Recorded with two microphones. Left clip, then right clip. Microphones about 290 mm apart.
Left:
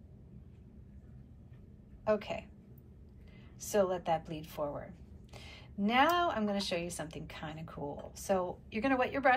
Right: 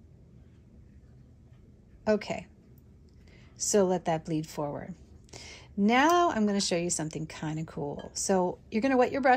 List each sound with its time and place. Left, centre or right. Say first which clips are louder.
2.0 s speech: right 4 dB; right
3.5 s speech: right 5 dB; right